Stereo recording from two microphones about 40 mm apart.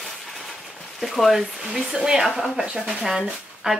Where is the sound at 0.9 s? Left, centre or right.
Centre.